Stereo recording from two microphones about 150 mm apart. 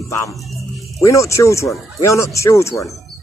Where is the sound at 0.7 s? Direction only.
Centre (ahead or behind).